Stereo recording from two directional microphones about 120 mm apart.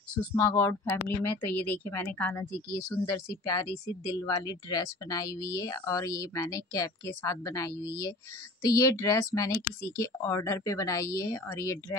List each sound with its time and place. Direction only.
0.3 s speech: 20° left (ahead or behind)